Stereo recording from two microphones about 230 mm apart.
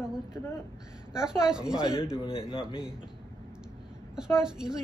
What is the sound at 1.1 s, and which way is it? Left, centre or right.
Speech, centre.